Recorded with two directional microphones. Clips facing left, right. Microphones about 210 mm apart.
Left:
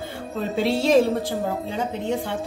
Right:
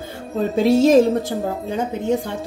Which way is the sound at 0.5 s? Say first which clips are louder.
Right 5 dB; 45° right (ahead or behind).